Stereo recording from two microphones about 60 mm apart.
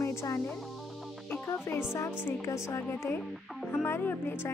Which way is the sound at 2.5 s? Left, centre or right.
Left.